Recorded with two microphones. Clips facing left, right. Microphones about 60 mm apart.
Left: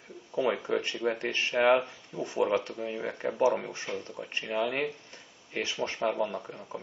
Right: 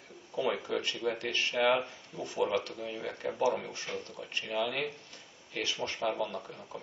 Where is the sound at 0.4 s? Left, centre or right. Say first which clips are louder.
Left 4 dB; left.